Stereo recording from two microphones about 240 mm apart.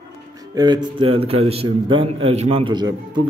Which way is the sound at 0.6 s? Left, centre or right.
Centre.